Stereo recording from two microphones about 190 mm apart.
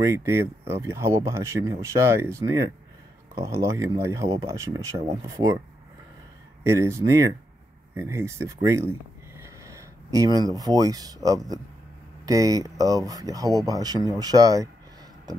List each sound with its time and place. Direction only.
0.0 s speech: 15° right (ahead or behind)
6.6 s speech: 15° right (ahead or behind)